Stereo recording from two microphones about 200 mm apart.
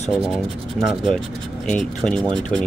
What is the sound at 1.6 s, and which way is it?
Speech, 5° left (ahead or behind).